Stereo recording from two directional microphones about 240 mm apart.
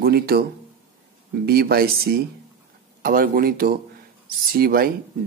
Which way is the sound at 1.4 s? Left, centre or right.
Right.